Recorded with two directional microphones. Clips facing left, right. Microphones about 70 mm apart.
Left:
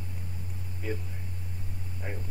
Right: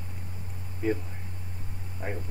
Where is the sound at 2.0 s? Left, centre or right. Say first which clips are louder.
Right 5 dB; right.